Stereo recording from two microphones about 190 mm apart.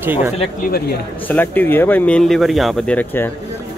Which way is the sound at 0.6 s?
50° left (ahead or behind).